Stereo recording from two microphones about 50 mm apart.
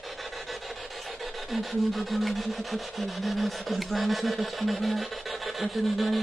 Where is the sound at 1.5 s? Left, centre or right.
Centre.